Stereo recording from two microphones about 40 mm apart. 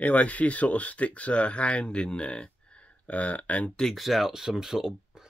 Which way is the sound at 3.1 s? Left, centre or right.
Left.